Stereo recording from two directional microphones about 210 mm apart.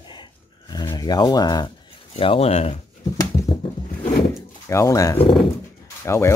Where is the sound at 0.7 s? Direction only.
20° left (ahead or behind).